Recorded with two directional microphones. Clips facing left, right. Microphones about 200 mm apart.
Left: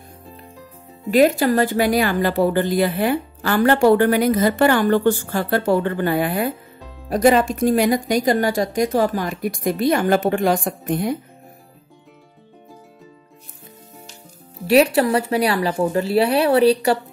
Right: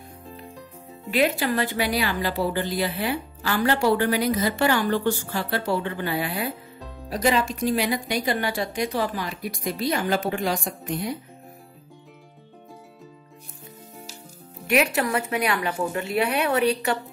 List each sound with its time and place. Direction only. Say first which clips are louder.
1.1 s a woman's voice: left 8 dB; 45° left (ahead or behind)
14.7 s speech: left 7 dB; 30° left (ahead or behind)